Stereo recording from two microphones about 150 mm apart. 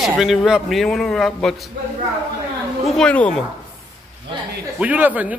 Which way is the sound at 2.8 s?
Centre (ahead or behind).